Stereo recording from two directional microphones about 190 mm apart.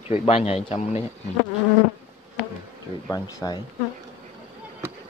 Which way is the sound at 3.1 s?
20° left (ahead or behind).